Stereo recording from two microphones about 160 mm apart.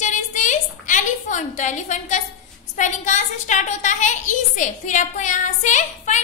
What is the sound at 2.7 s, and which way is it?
A woman's voice, 50° left (ahead or behind).